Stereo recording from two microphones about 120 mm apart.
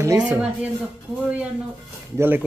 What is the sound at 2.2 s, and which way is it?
Speech, 15° right (ahead or behind).